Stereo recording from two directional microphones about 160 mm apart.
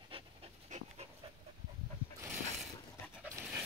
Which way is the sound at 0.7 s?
45° right (ahead or behind).